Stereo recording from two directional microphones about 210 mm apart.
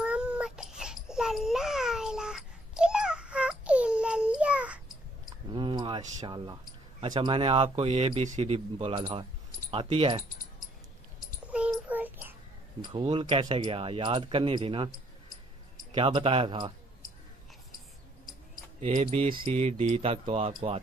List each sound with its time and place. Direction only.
0.0 s babbling: 5° right (ahead or behind)
5.5 s a sound: 20° right (ahead or behind)
7.0 s speech: 20° right (ahead or behind)
11.4 s child singing: 5° right (ahead or behind)
12.8 s speech: 25° right (ahead or behind)
15.9 s speech: 25° right (ahead or behind)
18.8 s speech: 30° right (ahead or behind)